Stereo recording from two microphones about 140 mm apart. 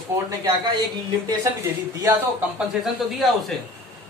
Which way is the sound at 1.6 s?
25° right (ahead or behind).